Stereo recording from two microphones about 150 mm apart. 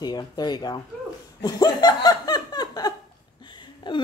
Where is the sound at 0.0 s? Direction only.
25° left (ahead or behind).